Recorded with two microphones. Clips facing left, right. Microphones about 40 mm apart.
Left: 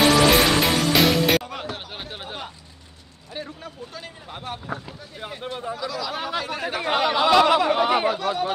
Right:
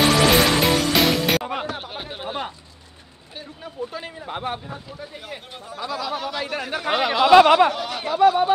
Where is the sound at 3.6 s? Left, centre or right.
Right.